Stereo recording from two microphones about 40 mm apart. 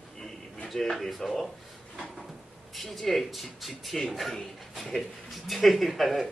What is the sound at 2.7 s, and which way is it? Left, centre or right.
Speech, centre.